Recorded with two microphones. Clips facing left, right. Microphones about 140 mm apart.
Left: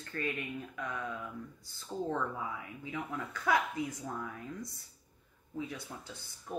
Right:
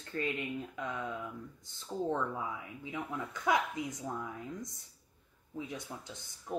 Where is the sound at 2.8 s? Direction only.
20° right (ahead or behind).